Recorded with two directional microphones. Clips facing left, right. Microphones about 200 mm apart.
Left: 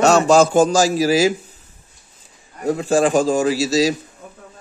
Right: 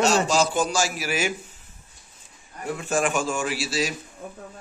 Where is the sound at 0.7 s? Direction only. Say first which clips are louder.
Left 11 dB; 90° left.